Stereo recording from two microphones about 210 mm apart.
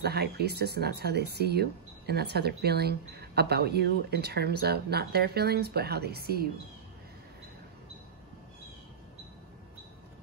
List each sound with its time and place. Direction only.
0.0 s speech: 50° right (ahead or behind)